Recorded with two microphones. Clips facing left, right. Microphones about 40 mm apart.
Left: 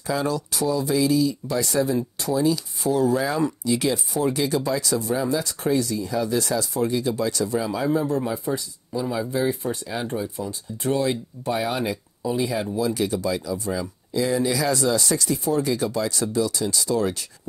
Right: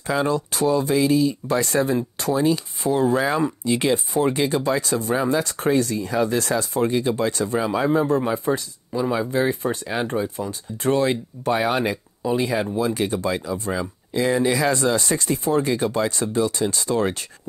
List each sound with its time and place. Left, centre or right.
0.0 s speech: right